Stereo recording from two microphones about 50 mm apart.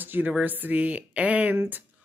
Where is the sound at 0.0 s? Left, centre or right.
Right.